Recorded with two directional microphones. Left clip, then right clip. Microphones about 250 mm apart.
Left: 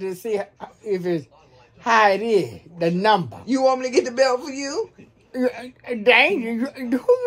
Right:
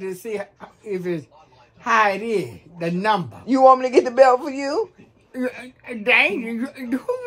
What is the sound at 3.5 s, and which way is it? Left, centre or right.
Speech, centre.